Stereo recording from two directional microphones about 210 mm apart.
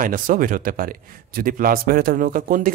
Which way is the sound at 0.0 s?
40° right (ahead or behind).